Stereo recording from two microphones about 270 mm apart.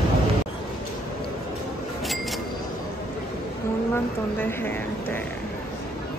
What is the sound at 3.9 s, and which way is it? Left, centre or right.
A woman's voice, centre.